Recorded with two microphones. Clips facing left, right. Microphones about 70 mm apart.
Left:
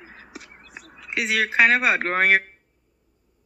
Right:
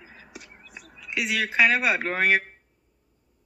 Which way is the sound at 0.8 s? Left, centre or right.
Left.